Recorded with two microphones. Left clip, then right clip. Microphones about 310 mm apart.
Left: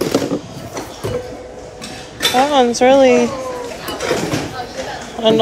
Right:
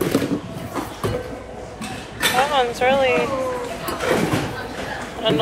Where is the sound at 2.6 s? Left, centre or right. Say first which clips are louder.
Left 7 dB; left.